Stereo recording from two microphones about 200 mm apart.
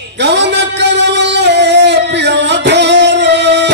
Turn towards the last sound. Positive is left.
turn(degrees=-60)  # may be behind; listen again after turning